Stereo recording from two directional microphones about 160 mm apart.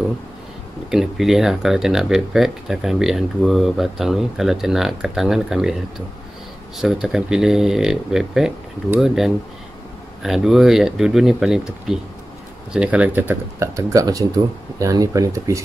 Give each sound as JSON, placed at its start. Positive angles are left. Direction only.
{"t": 0.8, "sound": "speech", "side_deg": 0}
{"t": 6.8, "sound": "speech", "side_deg": -5}